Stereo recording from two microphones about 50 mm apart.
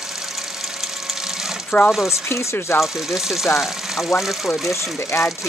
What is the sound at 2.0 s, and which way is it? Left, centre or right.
Speech, left.